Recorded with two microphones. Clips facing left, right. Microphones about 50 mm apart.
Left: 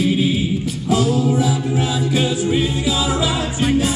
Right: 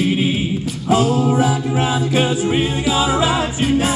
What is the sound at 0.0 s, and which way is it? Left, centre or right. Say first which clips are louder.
A capella: even; right.